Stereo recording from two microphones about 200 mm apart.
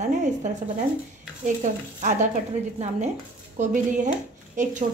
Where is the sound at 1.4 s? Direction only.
40° right (ahead or behind).